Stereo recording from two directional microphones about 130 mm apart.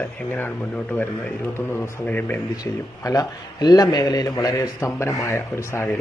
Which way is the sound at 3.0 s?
30° left (ahead or behind).